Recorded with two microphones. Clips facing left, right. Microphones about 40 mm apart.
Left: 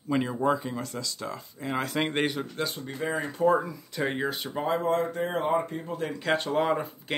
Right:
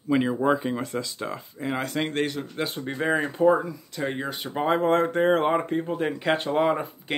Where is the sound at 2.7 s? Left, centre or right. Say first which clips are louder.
Right 6 dB; right.